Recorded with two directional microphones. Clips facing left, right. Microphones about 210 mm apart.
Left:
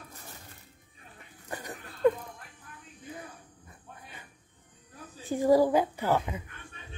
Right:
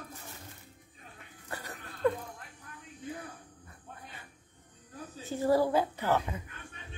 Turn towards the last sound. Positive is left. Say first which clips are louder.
# left 2 dB
turn(degrees=10)  # may be behind; listen again after turning